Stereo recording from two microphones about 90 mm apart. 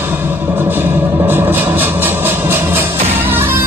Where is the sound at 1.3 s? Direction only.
20° right (ahead or behind).